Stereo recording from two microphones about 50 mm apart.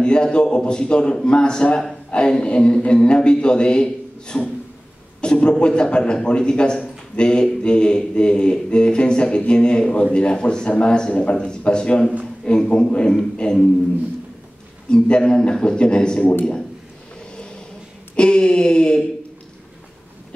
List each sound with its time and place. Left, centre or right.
0.0 s a man's voice: centre
14.9 s a man's voice: centre
18.1 s a man's voice: centre